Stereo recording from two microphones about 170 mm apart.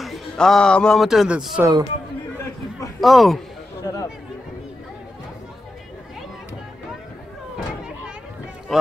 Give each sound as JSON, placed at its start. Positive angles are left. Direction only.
{"t": 0.0, "sound": "a man's voice", "side_deg": 0}
{"t": 1.6, "sound": "speech", "side_deg": -25}
{"t": 3.0, "sound": "speech", "side_deg": 0}